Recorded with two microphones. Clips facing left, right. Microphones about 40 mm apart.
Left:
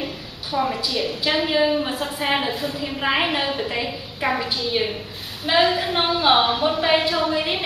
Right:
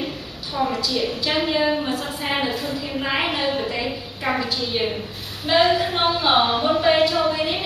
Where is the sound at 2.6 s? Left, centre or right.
Left.